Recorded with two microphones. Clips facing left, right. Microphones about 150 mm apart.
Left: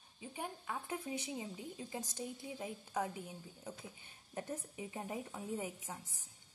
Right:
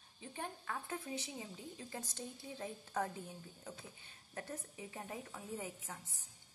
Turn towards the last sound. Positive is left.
turn(degrees=20)  # may be behind; listen again after turning